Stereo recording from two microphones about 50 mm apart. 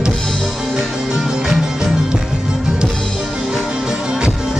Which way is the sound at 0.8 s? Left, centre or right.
Centre.